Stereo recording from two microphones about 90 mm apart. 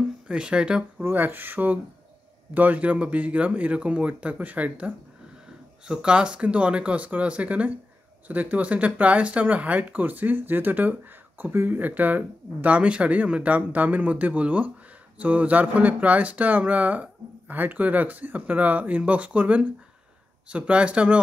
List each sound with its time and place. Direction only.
0.3 s speech: 10° right (ahead or behind)
1.0 s speech: 20° right (ahead or behind)